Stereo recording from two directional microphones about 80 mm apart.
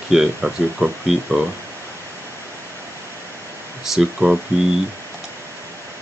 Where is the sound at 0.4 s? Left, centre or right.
Centre.